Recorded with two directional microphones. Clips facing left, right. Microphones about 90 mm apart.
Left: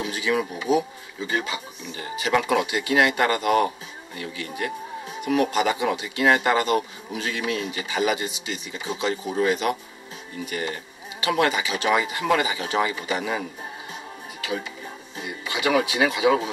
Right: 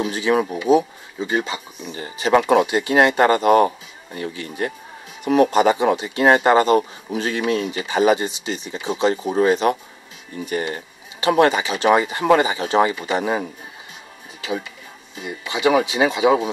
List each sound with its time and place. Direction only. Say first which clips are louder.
0.0 s speech: right 5 dB; 35° right (ahead or behind)
15.5 s speech: right 5 dB; 25° right (ahead or behind)